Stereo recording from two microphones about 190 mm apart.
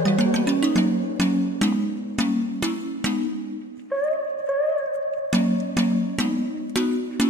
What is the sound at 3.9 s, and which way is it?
Music, 5° left (ahead or behind).